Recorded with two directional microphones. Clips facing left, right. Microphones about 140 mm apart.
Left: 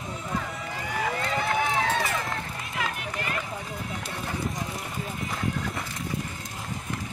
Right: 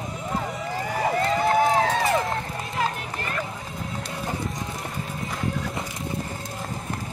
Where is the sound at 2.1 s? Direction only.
30° right (ahead or behind).